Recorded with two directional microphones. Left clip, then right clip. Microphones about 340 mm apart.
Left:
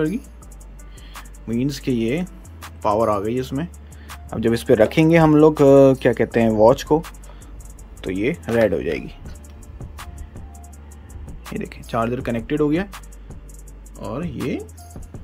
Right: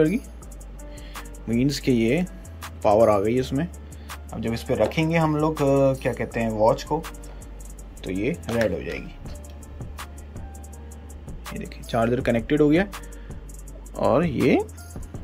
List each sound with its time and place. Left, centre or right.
1.1 s speech: centre
4.3 s speech: centre
8.0 s speech: centre
11.2 s speech: centre